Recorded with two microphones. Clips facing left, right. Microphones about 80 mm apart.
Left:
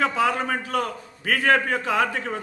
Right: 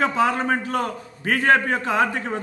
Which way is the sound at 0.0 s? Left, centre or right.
Right.